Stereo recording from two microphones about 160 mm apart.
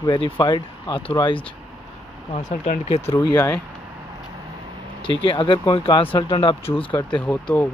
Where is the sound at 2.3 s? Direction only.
45° left (ahead or behind).